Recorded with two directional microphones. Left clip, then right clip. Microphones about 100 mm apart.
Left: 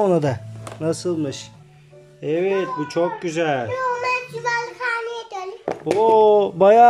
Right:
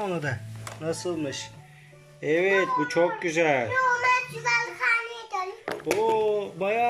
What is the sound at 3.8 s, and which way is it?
Child singing, 50° left (ahead or behind).